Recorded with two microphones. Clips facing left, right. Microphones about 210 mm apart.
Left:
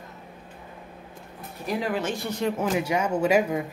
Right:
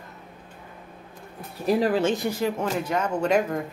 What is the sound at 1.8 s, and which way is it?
Speech, 30° right (ahead or behind).